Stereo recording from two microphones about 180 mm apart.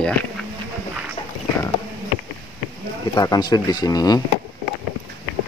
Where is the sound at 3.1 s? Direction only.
20° left (ahead or behind).